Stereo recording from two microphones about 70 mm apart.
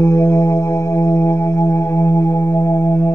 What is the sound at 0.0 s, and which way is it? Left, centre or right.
Music, left.